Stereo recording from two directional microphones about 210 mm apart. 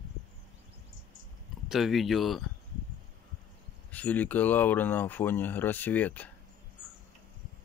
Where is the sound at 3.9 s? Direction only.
5° left (ahead or behind).